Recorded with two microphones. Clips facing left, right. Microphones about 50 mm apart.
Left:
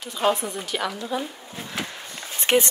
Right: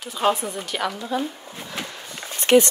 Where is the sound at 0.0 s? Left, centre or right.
Centre.